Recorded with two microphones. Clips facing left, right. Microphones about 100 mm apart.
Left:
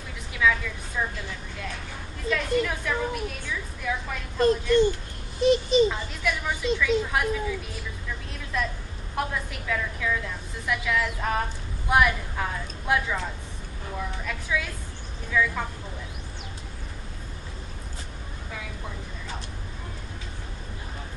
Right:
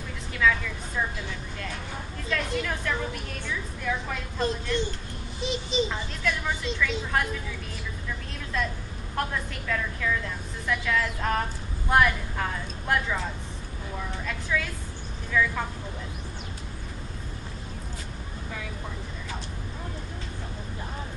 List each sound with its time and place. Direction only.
0.3 s vehicle: 5° left (ahead or behind)
2.2 s a woman's voice: centre (ahead or behind)
5.4 s a child's voice: 50° left (ahead or behind)
5.9 s a woman's voice: 5° left (ahead or behind)
9.1 s a woman's voice: 5° left (ahead or behind)
14.5 s a woman's voice: 5° left (ahead or behind)